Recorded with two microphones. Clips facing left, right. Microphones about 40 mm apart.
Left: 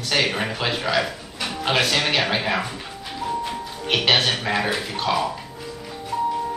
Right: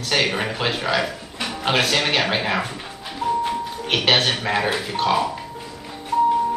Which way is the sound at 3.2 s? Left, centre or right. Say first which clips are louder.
Right 5 dB; right.